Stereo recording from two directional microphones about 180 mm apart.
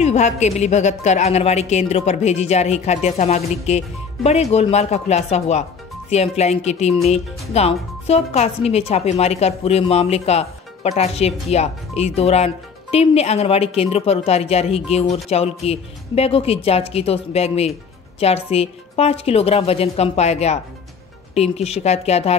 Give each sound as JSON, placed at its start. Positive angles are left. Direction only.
{"t": 0.0, "sound": "a woman's voice", "side_deg": 40}